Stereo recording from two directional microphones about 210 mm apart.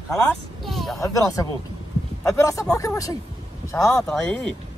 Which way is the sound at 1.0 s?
15° left (ahead or behind).